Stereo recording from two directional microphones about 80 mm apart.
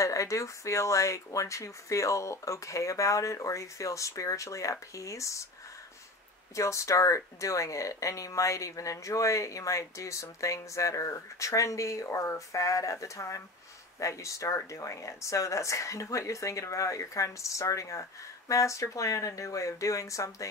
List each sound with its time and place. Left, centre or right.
0.0 s speech: left
6.5 s speech: left